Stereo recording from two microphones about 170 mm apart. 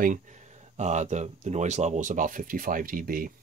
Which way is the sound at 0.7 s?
45° right (ahead or behind).